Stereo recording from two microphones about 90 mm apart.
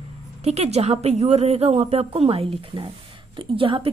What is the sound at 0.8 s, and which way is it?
Speech, 90° right.